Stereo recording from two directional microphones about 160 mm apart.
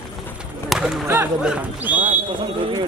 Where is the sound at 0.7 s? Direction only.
5° right (ahead or behind).